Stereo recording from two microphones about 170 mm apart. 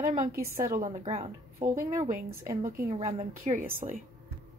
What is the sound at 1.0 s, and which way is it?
Speech, 40° right (ahead or behind).